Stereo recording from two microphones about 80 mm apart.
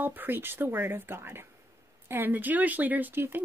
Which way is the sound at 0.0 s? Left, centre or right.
Right.